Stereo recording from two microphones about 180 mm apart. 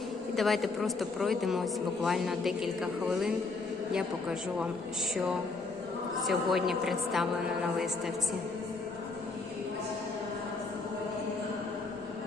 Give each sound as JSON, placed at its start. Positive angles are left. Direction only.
{"t": 0.4, "sound": "a man's voice", "side_deg": 0}
{"t": 6.2, "sound": "a man's voice", "side_deg": 0}